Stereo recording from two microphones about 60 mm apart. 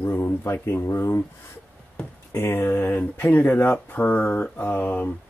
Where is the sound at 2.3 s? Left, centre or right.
Left.